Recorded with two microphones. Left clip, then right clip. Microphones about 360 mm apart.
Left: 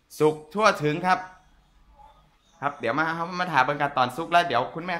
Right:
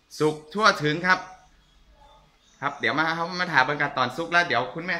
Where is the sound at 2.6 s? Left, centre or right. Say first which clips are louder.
Right 1 dB; centre.